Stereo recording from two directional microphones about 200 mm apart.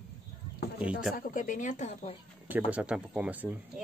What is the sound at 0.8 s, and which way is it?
Speech, 5° right (ahead or behind).